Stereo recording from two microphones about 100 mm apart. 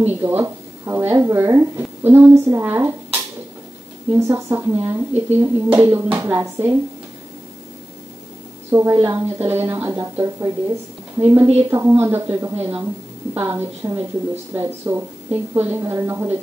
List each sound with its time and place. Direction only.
0.0 s a woman's voice: 20° right (ahead or behind)
4.2 s a woman's voice: 25° right (ahead or behind)
8.6 s a woman's voice: 25° right (ahead or behind)